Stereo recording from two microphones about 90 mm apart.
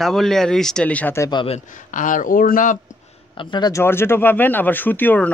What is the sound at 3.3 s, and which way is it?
Speech, 60° left (ahead or behind).